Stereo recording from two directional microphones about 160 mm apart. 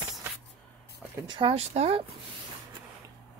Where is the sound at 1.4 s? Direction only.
40° right (ahead or behind).